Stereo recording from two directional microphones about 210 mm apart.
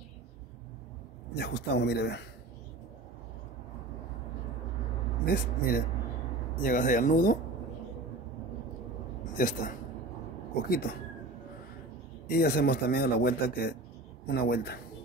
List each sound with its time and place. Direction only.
1.3 s speech: 55° left (ahead or behind)
5.2 s speech: 45° left (ahead or behind)
9.2 s a woman's voice: 40° left (ahead or behind)
12.3 s speech: 45° left (ahead or behind)